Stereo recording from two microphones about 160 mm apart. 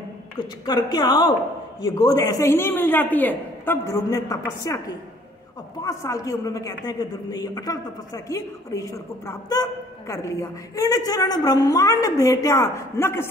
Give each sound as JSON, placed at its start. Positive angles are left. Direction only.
{"t": 0.4, "sound": "a woman's voice", "side_deg": 25}